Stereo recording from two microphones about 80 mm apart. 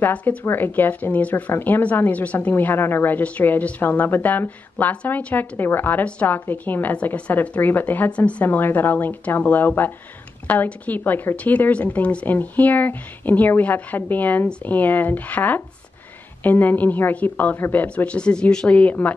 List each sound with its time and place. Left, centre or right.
0.0 s speech: centre
17.8 s speech: centre